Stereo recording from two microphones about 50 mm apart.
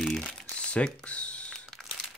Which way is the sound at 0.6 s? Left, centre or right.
Left.